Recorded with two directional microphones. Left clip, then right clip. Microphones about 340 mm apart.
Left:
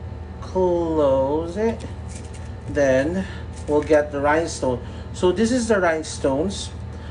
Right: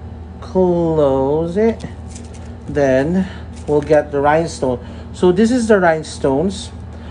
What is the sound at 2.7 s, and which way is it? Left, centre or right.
Speech, right.